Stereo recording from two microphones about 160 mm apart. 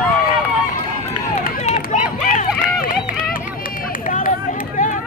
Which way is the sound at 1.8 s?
60° left (ahead or behind).